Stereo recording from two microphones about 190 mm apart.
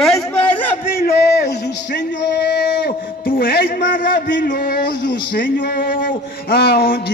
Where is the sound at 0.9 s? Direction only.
60° left (ahead or behind).